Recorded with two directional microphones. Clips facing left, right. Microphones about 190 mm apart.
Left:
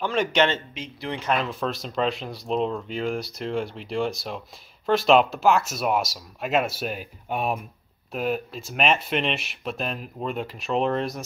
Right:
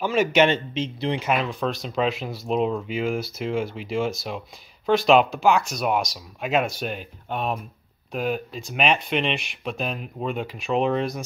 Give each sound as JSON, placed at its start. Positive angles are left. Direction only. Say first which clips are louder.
{"t": 0.0, "sound": "a man's voice", "louder": "right 3 dB", "side_deg": -5}
{"t": 0.7, "sound": "speech", "louder": "right 7 dB", "side_deg": -25}
{"t": 1.2, "sound": "speech", "louder": "left 3 dB", "side_deg": -5}